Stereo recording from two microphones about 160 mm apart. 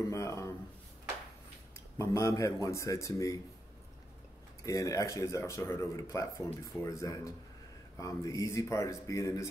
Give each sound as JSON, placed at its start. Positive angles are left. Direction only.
{"t": 0.1, "sound": "speech", "side_deg": 20}
{"t": 2.0, "sound": "speech", "side_deg": 20}
{"t": 4.6, "sound": "speech", "side_deg": 20}